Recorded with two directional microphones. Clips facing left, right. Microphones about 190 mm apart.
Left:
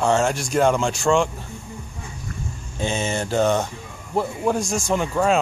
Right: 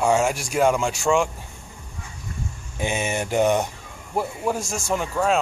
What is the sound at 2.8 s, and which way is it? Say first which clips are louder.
Speech: left 1 dB; 15° right (ahead or behind).